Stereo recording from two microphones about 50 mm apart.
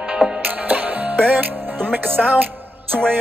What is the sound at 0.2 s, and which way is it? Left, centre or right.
Music, right.